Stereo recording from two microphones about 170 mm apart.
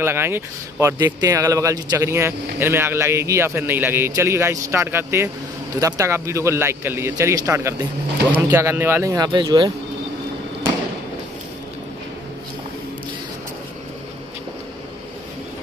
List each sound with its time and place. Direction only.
0.0 s speech: 15° right (ahead or behind)